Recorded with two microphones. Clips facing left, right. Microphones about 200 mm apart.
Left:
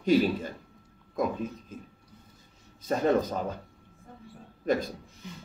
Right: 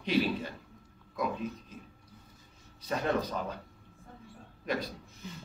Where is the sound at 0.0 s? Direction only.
45° left (ahead or behind).